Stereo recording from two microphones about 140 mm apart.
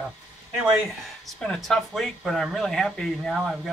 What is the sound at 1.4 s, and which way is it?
Speech, 5° left (ahead or behind).